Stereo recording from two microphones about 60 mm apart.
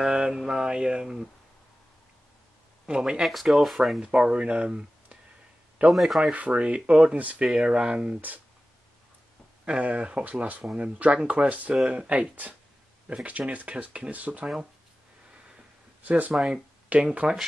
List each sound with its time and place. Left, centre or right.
0.0 s mantra: centre
0.4 s speech: centre
2.9 s speech: centre
3.3 s speech: centre
4.0 s speech: centre
5.9 s speech: centre
6.3 s speech: centre
9.7 s speech: right
16.1 s speech: right
16.3 s speech: centre
16.9 s speech: right